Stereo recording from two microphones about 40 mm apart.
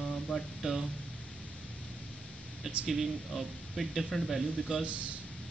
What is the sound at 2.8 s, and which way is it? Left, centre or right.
Speech, centre.